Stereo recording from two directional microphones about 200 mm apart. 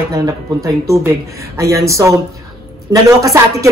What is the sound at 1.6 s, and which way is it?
A man's voice, 15° right (ahead or behind).